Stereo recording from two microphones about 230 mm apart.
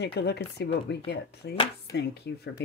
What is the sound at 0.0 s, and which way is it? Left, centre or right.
Speech, left.